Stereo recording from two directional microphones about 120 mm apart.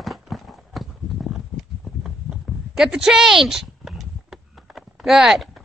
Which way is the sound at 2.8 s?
5° right (ahead or behind).